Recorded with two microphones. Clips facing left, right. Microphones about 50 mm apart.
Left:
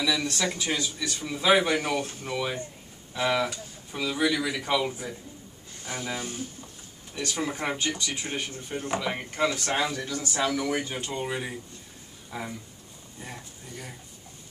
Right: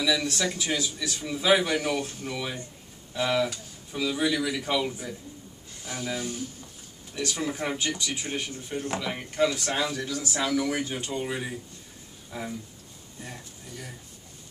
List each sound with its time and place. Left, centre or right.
0.0 s a man's voice: centre
5.9 s speech: centre
7.2 s a man's voice: centre